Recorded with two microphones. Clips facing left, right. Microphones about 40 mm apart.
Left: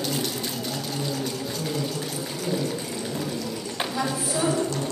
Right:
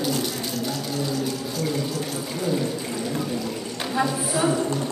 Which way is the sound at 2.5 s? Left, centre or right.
Centre.